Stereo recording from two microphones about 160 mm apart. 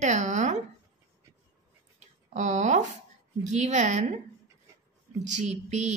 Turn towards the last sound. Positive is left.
turn(degrees=-45)  # may be behind; listen again after turning